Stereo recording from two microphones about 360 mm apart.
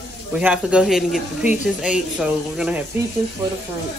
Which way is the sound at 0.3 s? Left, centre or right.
Centre.